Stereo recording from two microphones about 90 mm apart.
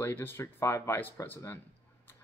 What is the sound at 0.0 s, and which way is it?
Speech, 25° left (ahead or behind).